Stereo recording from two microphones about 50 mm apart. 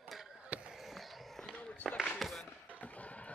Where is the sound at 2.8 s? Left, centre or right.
Left.